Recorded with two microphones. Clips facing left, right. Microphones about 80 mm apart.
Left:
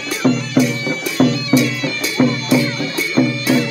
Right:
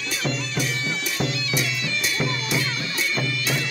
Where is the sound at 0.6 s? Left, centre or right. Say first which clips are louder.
Left 11 dB; left.